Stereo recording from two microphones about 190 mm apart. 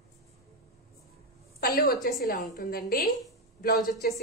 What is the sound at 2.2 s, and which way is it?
A woman's voice, 50° left (ahead or behind).